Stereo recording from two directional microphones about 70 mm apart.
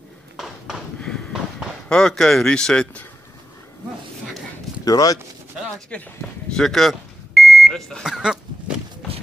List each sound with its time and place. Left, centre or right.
1.0 s a sound: centre
1.9 s speech: centre
4.8 s speech: left
5.9 s speech: centre
6.5 s smoke detector: centre
8.0 s a sound: centre